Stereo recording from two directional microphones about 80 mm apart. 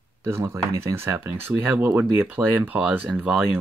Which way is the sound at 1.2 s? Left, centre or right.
Right.